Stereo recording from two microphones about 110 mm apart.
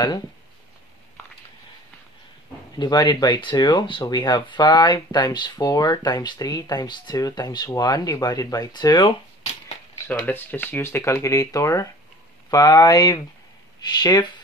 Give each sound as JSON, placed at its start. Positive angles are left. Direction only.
{"t": 2.8, "sound": "speech", "side_deg": 40}
{"t": 10.2, "sound": "speech", "side_deg": 15}